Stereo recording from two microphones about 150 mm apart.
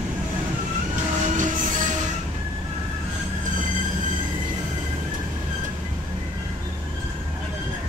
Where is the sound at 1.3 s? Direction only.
60° right (ahead or behind).